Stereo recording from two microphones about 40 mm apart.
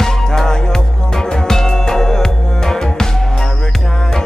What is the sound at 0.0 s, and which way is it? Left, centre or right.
Music, centre.